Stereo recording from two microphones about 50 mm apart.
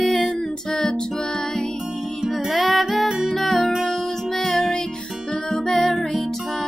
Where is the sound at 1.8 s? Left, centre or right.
Centre.